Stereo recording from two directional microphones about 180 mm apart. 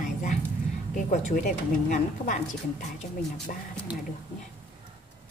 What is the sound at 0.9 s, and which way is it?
A woman's voice, 45° left (ahead or behind).